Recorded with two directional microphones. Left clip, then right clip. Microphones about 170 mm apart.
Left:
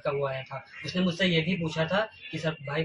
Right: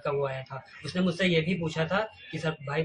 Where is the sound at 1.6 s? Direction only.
35° right (ahead or behind).